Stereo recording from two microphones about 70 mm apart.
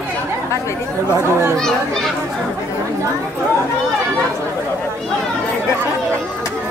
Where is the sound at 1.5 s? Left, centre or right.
Centre.